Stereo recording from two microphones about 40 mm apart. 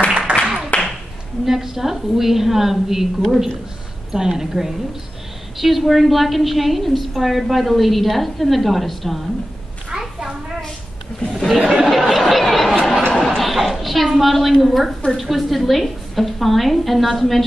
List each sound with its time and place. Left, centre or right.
0.7 s clapping: left
1.4 s a woman's voice: centre
11.3 s chatter: centre
13.1 s a sound: centre
13.4 s a woman's voice: centre